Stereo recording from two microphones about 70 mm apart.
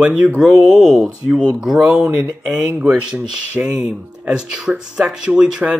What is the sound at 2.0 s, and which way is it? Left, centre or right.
Speech, right.